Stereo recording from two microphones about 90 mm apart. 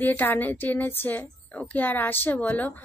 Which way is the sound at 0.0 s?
20° left (ahead or behind).